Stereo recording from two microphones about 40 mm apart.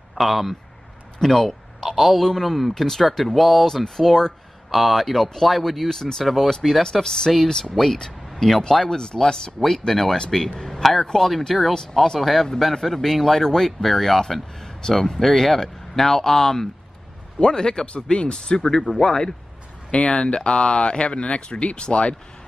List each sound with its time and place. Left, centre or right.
0.1 s speech: centre
6.2 s speech: centre
6.8 s speech: centre